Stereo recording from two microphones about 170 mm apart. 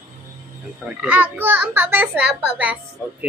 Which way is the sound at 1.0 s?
10° right (ahead or behind).